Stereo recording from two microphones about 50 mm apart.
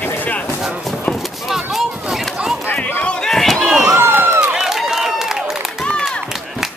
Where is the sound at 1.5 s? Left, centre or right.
Centre.